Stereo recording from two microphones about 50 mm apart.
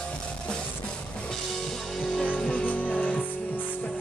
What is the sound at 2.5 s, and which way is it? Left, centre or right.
Music, left.